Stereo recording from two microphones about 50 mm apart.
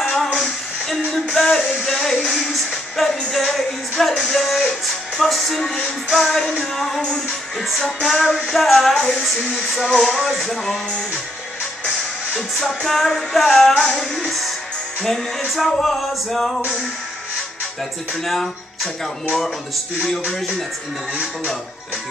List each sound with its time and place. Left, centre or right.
0.4 s a sound: centre
2.2 s music: centre
7.0 s music: centre
7.5 s music: centre
8.9 s music: centre
9.2 s music: centre
10.4 s music: centre
12.6 s music: centre
18.2 s music: centre
20.1 s music: centre